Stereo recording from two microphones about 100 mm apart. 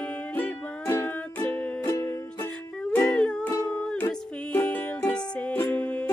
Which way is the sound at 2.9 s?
10° left (ahead or behind).